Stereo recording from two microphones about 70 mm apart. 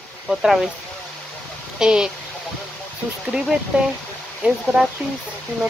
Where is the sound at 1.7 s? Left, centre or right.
Centre.